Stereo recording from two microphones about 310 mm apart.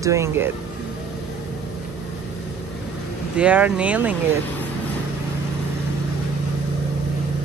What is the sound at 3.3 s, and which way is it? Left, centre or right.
Speech, centre.